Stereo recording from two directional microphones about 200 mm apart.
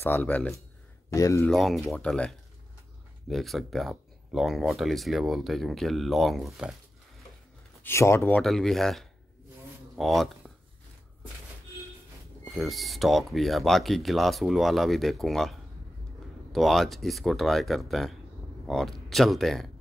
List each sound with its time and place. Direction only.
0.0 s speech: 10° left (ahead or behind)
1.5 s speech: centre (ahead or behind)
7.8 s speech: 15° left (ahead or behind)
12.4 s speech: centre (ahead or behind)